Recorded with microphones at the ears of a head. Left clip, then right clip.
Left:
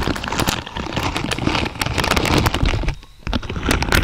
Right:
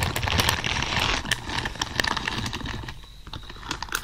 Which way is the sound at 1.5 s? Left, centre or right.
Left.